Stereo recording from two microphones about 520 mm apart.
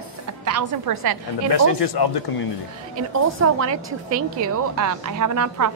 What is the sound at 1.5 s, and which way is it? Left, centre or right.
Speech, left.